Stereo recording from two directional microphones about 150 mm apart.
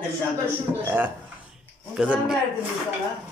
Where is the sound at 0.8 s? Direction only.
15° right (ahead or behind).